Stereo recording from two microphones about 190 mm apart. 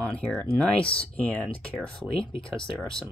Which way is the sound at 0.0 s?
5° left (ahead or behind).